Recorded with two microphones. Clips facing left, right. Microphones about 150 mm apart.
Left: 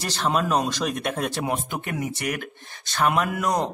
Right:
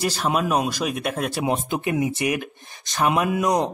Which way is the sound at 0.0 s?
10° right (ahead or behind).